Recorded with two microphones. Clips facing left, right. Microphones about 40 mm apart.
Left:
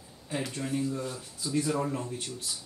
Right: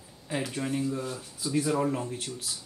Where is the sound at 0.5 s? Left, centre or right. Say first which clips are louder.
Right 1 dB; centre.